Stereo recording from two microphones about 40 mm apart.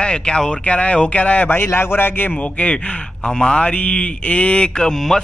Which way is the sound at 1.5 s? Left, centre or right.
Left.